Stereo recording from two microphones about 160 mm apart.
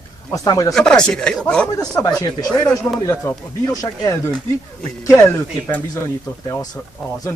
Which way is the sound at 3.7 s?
20° left (ahead or behind).